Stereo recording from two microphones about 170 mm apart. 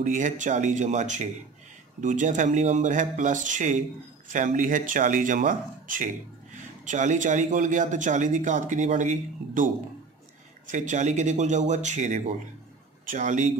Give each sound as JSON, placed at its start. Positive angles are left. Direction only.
{"t": 0.0, "sound": "speech", "side_deg": -45}
{"t": 10.7, "sound": "a man's voice", "side_deg": -45}